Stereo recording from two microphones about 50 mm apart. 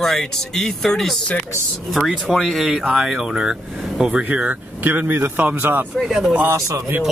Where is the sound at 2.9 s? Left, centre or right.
Centre.